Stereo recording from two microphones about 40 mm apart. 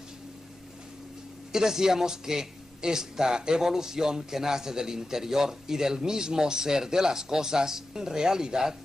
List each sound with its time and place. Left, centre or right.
1.5 s a man's voice: centre